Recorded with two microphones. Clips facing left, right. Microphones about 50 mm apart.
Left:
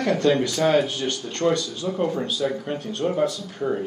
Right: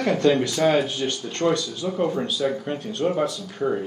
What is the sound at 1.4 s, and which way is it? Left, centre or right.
Speech, centre.